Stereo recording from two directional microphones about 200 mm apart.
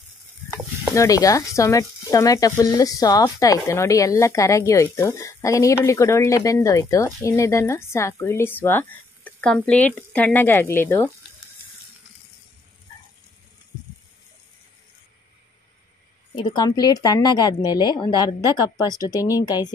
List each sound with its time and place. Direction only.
0.5 s stir: 15° left (ahead or behind)
16.3 s speech: 25° left (ahead or behind)